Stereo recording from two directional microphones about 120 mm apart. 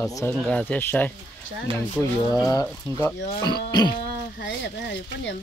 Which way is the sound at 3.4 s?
35° left (ahead or behind).